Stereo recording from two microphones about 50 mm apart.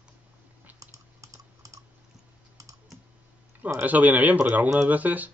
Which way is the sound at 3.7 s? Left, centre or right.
Right.